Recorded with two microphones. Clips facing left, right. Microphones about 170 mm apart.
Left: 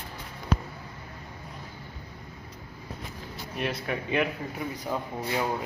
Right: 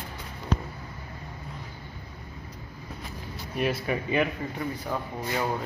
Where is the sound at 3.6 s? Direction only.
5° right (ahead or behind).